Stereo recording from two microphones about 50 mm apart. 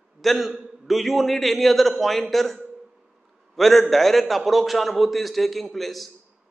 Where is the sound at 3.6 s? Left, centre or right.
Centre.